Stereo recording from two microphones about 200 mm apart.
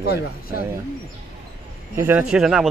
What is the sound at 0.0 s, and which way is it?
Speech, 50° left (ahead or behind).